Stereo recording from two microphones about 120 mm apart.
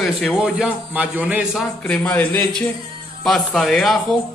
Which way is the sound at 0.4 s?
15° right (ahead or behind).